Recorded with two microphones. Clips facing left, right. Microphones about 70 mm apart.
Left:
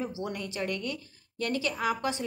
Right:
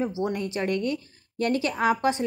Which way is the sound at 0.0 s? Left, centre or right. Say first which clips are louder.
Right 7 dB; right.